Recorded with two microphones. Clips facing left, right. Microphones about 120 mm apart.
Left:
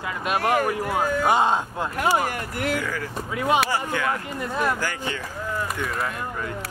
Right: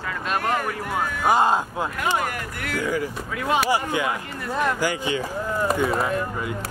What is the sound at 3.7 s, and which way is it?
Speech, 15° right (ahead or behind).